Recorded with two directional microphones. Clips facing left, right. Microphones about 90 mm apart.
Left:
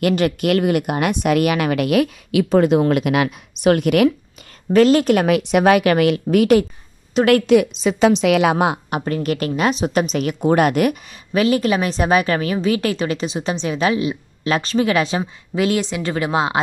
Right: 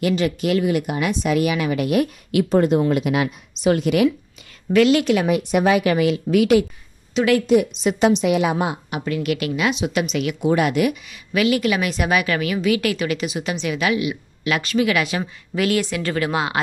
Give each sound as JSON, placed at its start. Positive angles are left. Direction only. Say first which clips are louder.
{"t": 0.0, "sound": "speech", "louder": "left 3 dB", "side_deg": 60}
{"t": 4.7, "sound": "a woman's voice", "louder": "left 3 dB", "side_deg": 40}
{"t": 5.2, "sound": "speech", "louder": "left 3 dB", "side_deg": 85}
{"t": 6.2, "sound": "speech", "louder": "even", "side_deg": 45}
{"t": 8.1, "sound": "a woman's voice", "louder": "left 3 dB", "side_deg": 90}
{"t": 8.9, "sound": "a woman's voice", "louder": "left 2 dB", "side_deg": 40}
{"t": 11.3, "sound": "a woman's voice", "louder": "left 2 dB", "side_deg": 35}